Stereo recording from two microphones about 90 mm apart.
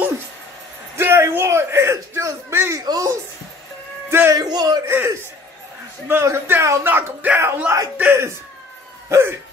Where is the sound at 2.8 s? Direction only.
40° right (ahead or behind).